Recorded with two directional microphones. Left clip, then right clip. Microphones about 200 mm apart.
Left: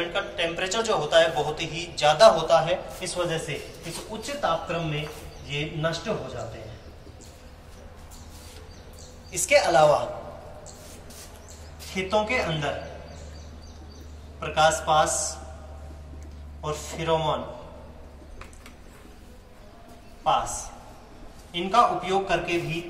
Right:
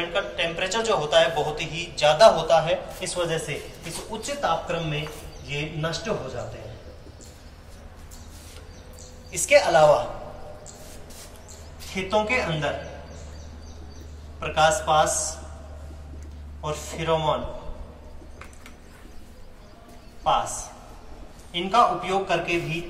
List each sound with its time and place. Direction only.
0.1 s a man's voice: 20° left (ahead or behind); by 6.1 s 5° right (ahead or behind)
9.3 s a man's voice: 15° left (ahead or behind)
11.9 s a man's voice: 15° left (ahead or behind)
14.4 s a man's voice: 15° left (ahead or behind)
16.6 s a man's voice: 10° left (ahead or behind)
20.2 s a man's voice: 15° left (ahead or behind)